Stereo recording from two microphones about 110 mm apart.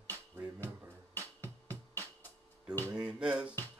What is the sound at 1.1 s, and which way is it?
Music, 15° left (ahead or behind).